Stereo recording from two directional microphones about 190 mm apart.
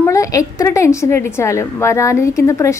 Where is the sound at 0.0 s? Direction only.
15° left (ahead or behind).